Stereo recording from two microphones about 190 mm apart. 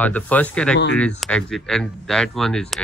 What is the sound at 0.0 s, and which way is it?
Speech, 10° left (ahead or behind).